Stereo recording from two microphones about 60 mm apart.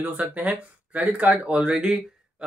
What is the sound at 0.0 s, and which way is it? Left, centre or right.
Speech, right.